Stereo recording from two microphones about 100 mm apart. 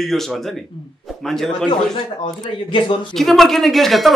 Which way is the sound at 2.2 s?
55° left (ahead or behind).